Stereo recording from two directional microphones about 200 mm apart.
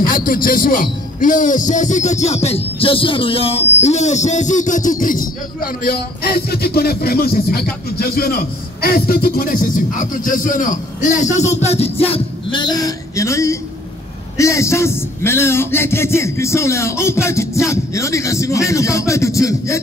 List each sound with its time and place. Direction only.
0.0 s a man's voice: 45° left (ahead or behind); by 19.8 s 15° left (ahead or behind)